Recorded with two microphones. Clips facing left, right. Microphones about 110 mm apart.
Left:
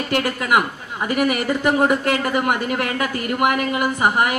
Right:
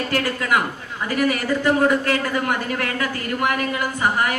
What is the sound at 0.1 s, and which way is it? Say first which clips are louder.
A man's voice: left 3 dB; 20° left (ahead or behind).